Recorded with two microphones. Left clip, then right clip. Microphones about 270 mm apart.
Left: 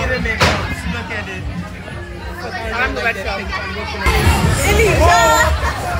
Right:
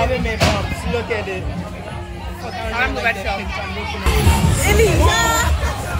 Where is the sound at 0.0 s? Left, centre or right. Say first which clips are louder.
Left 2 dB; centre.